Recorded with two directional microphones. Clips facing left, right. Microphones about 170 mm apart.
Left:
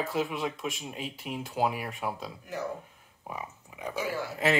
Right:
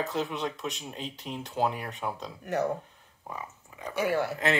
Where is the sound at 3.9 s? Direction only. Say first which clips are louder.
Right 6 dB; 65° right (ahead or behind).